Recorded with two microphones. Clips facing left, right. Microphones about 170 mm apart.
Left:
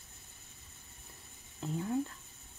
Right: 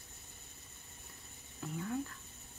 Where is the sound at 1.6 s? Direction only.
25° left (ahead or behind).